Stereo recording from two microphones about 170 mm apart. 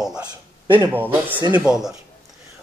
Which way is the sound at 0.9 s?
10° right (ahead or behind).